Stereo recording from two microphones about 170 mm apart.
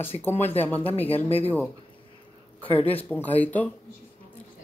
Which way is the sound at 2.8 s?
35° left (ahead or behind).